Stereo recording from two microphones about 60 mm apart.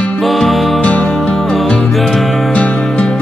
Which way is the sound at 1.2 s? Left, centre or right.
Centre.